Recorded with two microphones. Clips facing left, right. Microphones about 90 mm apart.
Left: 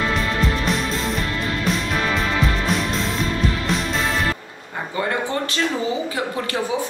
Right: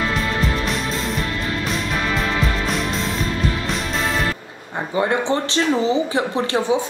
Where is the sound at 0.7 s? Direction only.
Centre (ahead or behind).